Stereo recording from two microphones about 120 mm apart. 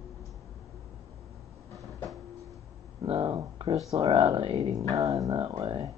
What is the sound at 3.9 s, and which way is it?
Speech, 50° right (ahead or behind).